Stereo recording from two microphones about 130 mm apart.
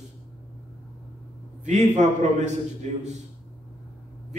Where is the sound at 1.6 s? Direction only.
65° right (ahead or behind).